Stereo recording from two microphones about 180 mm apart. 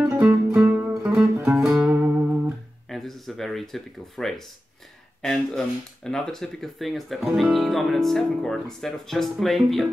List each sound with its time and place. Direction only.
0.0 s music: 10° right (ahead or behind)
1.4 s music: 15° right (ahead or behind)
2.9 s speech: centre (ahead or behind)